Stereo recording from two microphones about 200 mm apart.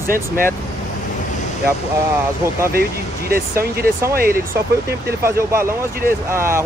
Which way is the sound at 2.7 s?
45° right (ahead or behind).